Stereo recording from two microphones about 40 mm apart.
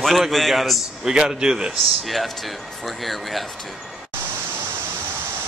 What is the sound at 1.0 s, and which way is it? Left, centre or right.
Speech, centre.